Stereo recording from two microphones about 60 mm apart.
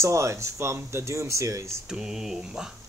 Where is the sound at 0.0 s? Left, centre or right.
Right.